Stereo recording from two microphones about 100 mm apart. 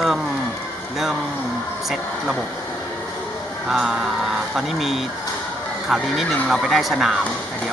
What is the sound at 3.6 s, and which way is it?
Speech, 5° right (ahead or behind).